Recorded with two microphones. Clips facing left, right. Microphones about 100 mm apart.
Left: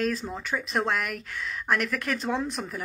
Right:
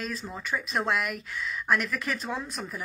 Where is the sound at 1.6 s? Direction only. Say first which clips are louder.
Left 1 dB; 65° left (ahead or behind).